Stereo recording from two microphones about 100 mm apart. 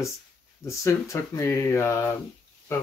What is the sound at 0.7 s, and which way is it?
Speech, 30° left (ahead or behind).